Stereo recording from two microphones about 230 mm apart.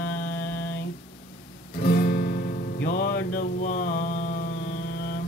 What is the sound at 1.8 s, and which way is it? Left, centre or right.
Music, left.